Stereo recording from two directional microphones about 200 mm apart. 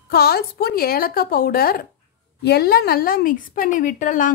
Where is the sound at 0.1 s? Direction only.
50° left (ahead or behind).